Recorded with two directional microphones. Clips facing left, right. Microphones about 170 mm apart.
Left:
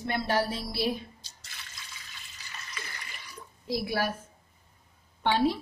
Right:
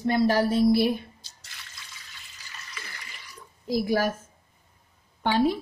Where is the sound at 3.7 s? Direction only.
45° right (ahead or behind).